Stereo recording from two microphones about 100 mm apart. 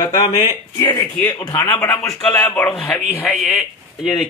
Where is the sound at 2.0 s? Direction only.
10° left (ahead or behind).